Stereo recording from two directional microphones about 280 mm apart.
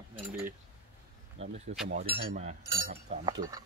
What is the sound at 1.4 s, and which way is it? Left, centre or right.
Speech, right.